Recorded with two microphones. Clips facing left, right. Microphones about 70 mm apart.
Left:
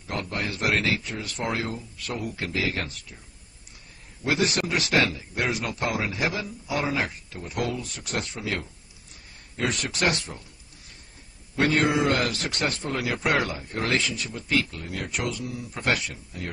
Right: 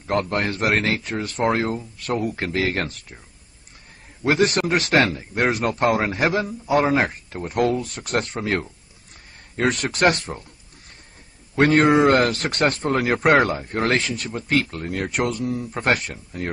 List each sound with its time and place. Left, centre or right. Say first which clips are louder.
0.0 s a man's voice: right 8 dB; right
4.2 s a man's voice: right 6 dB; right
11.5 s a man's voice: right 7 dB; right